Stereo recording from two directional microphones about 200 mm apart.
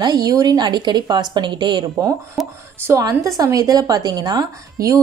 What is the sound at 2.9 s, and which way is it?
A woman's voice, 15° right (ahead or behind).